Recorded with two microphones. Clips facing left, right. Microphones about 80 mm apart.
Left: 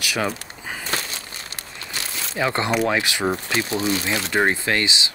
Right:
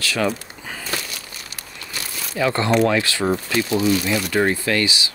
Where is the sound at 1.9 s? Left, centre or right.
Left.